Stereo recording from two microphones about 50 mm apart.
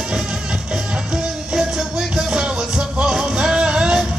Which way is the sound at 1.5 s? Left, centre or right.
Centre.